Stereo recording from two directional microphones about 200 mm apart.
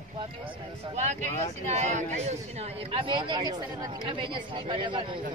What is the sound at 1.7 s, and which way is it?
Speech, 35° right (ahead or behind).